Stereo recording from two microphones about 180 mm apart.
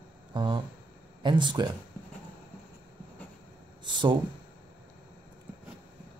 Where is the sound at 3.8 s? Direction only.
25° right (ahead or behind).